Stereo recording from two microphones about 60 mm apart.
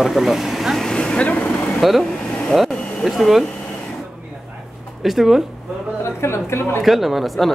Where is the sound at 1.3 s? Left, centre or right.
Left.